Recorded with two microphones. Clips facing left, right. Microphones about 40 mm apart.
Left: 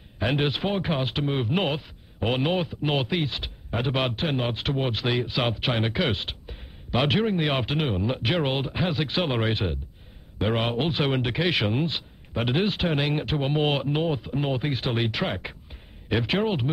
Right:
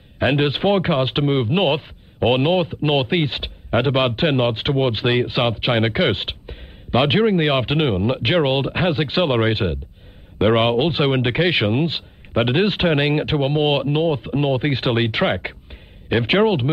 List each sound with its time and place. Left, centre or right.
0.2 s speech: right
3.9 s speech: right
4.2 s speech: right
5.4 s speech: right
5.7 s speech: right
13.5 s speech: centre
14.7 s speech: right